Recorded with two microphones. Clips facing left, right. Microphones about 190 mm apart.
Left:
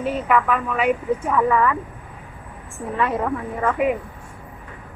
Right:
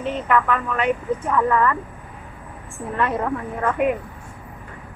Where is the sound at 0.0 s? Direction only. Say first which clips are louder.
Left 1 dB; 5° left (ahead or behind).